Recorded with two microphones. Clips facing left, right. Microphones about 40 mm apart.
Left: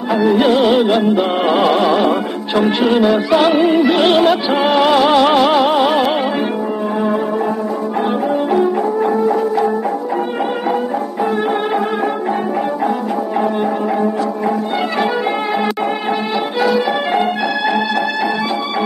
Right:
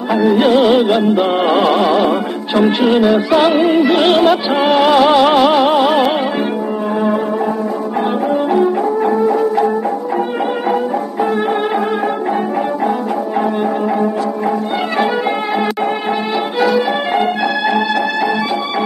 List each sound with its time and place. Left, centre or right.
0.1 s music: centre
8.5 s music: centre
16.6 s music: centre